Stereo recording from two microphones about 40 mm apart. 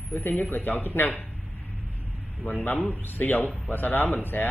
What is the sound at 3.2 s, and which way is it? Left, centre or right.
Speech, left.